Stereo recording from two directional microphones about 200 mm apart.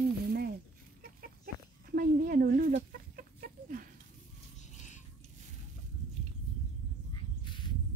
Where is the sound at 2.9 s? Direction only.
45° right (ahead or behind).